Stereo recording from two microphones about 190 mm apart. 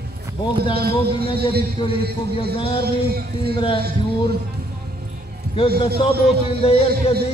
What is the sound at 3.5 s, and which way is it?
Speech, 30° left (ahead or behind).